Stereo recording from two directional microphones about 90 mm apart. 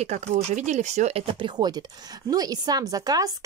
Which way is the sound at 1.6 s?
50° right (ahead or behind).